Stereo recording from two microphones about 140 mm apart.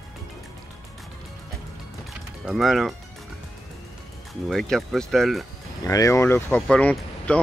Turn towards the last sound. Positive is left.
turn(degrees=10)  # may be behind; listen again after turning